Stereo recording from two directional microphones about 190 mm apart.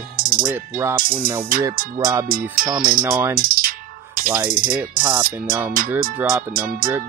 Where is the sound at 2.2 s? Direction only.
45° right (ahead or behind).